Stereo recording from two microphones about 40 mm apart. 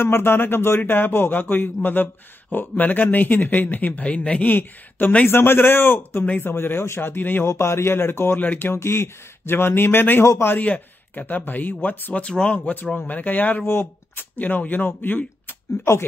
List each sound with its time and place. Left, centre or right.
0.0 s a man's voice: left
4.5 s a man's voice: left
5.3 s a man's voice: left
7.4 s a man's voice: left
8.4 s speech: left
10.6 s a man's voice: left
12.3 s speech: left
12.5 s a man's voice: left
13.7 s speech: left
14.4 s a man's voice: left
14.9 s speech: left